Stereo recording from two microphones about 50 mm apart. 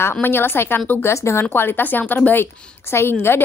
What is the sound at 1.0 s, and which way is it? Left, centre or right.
Speech, left.